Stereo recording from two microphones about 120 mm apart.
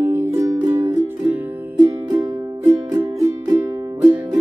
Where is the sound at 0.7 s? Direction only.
15° right (ahead or behind).